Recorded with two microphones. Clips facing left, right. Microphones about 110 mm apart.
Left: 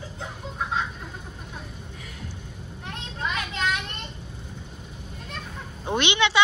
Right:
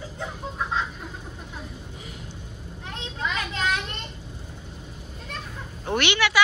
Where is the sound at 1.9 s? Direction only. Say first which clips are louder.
Even; 25° right (ahead or behind).